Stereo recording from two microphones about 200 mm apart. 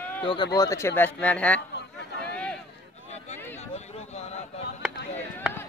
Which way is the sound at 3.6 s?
35° left (ahead or behind).